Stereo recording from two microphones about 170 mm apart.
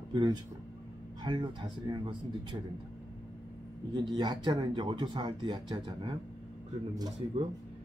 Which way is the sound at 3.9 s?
25° right (ahead or behind).